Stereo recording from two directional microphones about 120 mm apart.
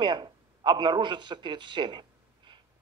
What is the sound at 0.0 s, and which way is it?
A man's voice, 40° right (ahead or behind).